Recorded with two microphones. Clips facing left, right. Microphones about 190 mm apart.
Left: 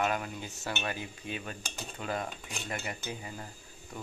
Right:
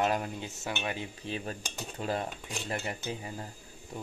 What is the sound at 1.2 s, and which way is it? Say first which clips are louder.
Speech: right 4 dB; 35° right (ahead or behind).